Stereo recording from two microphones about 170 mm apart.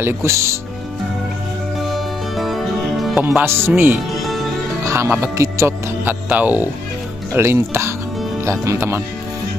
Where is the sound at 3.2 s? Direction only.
10° right (ahead or behind).